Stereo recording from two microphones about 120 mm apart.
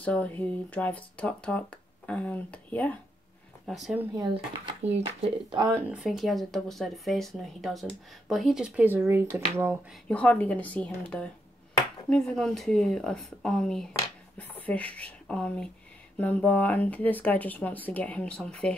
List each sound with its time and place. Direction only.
0.0 s speech: 10° left (ahead or behind)
3.6 s speech: centre (ahead or behind)
4.2 s speech: 45° right (ahead or behind)
4.8 s speech: 60° right (ahead or behind)
5.7 s speech: 20° right (ahead or behind)
6.0 s speech: centre (ahead or behind); by 9.2 s 20° right (ahead or behind)
10.0 s speech: 10° left (ahead or behind)